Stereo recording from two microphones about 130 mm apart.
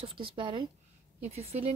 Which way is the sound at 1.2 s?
55° right (ahead or behind).